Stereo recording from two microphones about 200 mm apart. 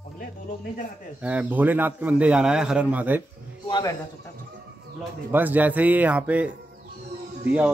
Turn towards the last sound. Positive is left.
turn(degrees=-5)  # may be behind; listen again after turning